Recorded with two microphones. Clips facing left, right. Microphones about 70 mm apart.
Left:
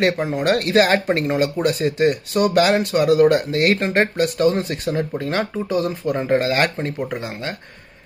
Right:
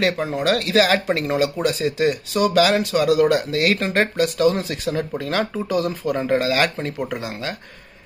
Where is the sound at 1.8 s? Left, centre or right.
Left.